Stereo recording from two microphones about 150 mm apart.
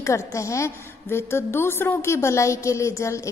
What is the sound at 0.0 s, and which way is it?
A woman's voice, 20° left (ahead or behind).